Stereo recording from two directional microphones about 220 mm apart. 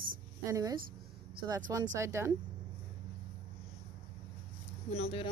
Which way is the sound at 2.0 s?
15° right (ahead or behind).